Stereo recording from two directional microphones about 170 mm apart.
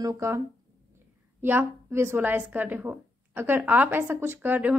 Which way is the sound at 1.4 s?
15° right (ahead or behind).